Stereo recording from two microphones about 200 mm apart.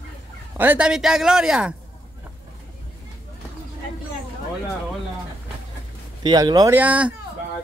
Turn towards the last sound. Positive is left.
turn(degrees=-5)  # may be behind; listen again after turning